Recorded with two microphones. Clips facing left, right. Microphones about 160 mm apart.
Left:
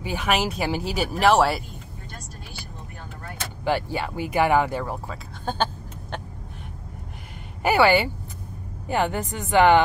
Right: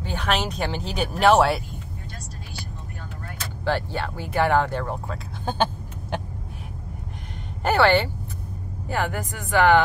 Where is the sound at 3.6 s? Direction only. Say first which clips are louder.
Left 1 dB; 10° left (ahead or behind).